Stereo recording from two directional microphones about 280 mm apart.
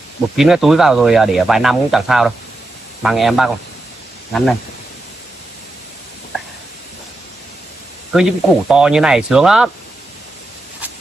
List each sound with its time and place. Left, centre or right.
0.4 s speech: centre
8.1 s speech: centre